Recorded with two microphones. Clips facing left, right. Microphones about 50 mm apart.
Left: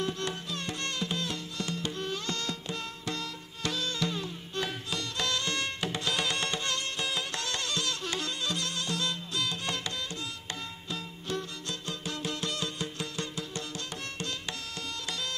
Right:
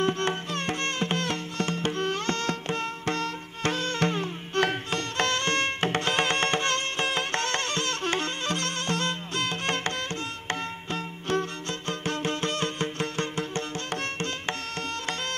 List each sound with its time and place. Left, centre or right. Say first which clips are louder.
0.0 s music: right 7 dB; right